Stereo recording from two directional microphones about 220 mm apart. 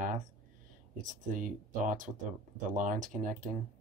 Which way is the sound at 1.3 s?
35° right (ahead or behind).